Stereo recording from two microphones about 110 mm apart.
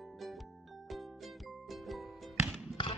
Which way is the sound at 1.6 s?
Centre (ahead or behind).